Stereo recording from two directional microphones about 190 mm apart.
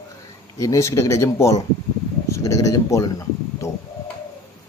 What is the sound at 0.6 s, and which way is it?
A man's voice, 15° left (ahead or behind).